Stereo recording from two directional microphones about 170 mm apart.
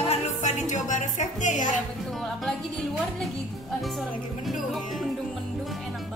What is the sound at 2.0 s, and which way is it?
A woman's voice, centre (ahead or behind).